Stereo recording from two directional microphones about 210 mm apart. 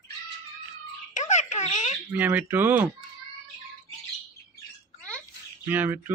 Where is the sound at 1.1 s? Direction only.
35° left (ahead or behind).